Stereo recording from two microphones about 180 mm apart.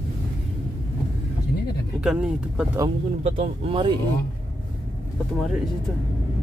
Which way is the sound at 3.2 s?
30° right (ahead or behind).